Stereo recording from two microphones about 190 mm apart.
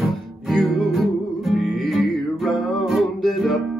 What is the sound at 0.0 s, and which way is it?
Music, centre (ahead or behind).